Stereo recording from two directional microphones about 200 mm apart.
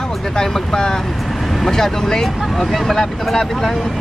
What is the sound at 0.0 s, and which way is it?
Speech, 5° left (ahead or behind).